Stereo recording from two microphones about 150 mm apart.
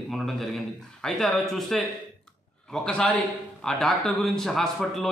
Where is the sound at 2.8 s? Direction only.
10° left (ahead or behind).